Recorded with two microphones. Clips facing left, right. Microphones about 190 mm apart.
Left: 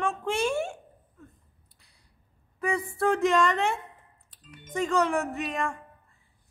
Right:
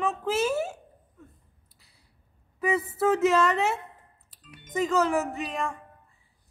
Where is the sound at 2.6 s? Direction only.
5° right (ahead or behind).